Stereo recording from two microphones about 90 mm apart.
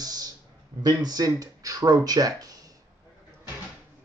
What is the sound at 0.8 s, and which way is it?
Speech, 45° right (ahead or behind).